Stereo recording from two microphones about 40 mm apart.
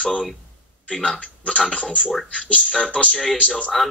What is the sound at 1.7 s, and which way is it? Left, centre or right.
Speech, left.